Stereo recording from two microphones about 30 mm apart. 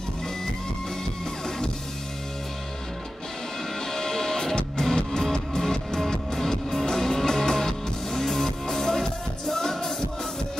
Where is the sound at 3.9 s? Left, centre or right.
Centre.